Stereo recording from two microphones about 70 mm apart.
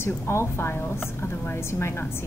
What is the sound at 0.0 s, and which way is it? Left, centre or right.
A woman's voice, left.